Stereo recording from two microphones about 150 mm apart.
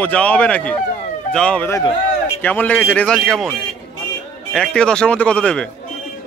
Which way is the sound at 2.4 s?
10° left (ahead or behind).